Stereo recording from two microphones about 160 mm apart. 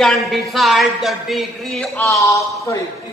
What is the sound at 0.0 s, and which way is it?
Speech, centre (ahead or behind).